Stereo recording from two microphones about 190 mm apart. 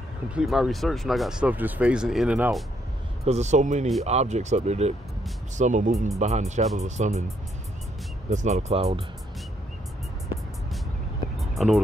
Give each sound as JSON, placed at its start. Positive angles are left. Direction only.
{"t": 0.3, "sound": "speech", "side_deg": -5}
{"t": 3.3, "sound": "speech", "side_deg": -35}
{"t": 8.3, "sound": "speech", "side_deg": -35}
{"t": 11.3, "sound": "vehicle", "side_deg": 0}